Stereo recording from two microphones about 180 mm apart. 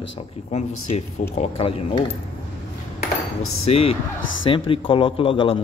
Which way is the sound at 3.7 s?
35° left (ahead or behind).